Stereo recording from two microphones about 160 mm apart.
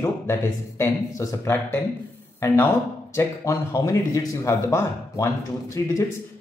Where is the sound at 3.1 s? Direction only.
20° left (ahead or behind).